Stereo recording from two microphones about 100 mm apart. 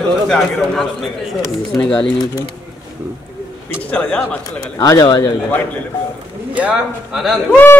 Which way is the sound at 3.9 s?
10° left (ahead or behind).